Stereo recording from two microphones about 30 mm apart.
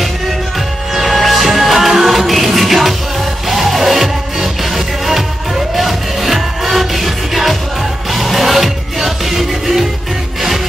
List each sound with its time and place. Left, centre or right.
0.9 s music: centre